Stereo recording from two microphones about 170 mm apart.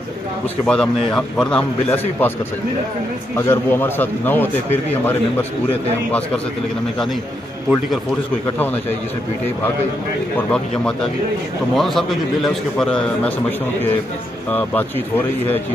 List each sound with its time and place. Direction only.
0.7 s a man's voice: 5° left (ahead or behind)
3.3 s a man's voice: 15° left (ahead or behind)
10.3 s a man's voice: 5° left (ahead or behind)